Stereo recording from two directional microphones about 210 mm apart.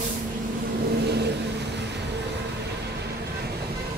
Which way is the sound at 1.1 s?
55° right (ahead or behind).